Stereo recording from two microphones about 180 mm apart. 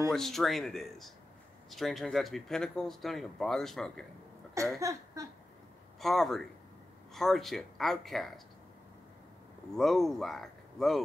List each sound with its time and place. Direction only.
0.1 s speech: centre (ahead or behind)
4.7 s a sound: 15° right (ahead or behind)
5.9 s speech: centre (ahead or behind)
9.8 s speech: centre (ahead or behind)